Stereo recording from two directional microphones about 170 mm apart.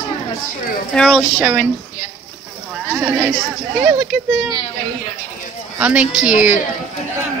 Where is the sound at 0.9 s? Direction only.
Centre (ahead or behind).